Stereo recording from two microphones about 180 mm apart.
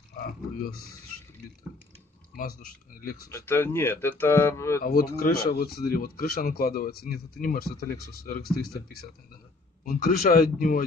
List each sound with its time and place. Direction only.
2.3 s speech: 50° left (ahead or behind)
3.3 s speech: 15° left (ahead or behind)
4.8 s speech: 55° left (ahead or behind)